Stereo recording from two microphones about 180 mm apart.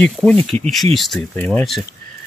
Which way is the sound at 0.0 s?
5° left (ahead or behind).